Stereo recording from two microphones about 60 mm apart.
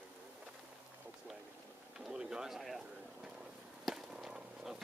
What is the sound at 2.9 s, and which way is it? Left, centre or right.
Vehicle, centre.